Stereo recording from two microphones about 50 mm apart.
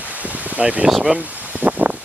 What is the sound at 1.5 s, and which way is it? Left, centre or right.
Wind noise, right.